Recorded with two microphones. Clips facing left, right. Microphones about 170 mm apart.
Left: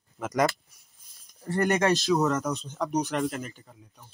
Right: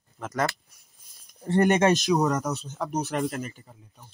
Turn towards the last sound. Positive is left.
turn(degrees=-5)  # may be behind; listen again after turning